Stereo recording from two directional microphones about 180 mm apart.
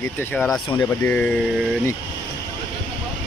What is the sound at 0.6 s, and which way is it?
Speech, 25° left (ahead or behind).